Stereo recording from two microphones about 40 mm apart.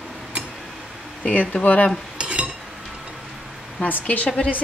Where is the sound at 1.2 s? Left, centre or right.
Left.